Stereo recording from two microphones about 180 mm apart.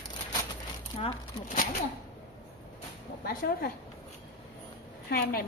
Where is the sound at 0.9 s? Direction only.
35° left (ahead or behind).